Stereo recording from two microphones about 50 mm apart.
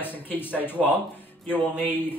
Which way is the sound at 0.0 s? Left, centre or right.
Left.